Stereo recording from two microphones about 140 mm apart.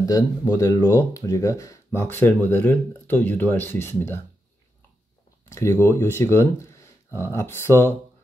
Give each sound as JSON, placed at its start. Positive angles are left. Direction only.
{"t": 0.0, "sound": "speech", "side_deg": 25}
{"t": 5.5, "sound": "speech", "side_deg": 20}